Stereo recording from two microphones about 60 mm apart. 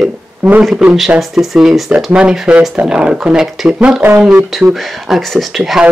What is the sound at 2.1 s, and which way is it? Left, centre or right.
Speech, centre.